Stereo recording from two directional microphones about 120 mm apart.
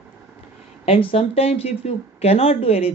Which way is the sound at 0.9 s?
50° left (ahead or behind).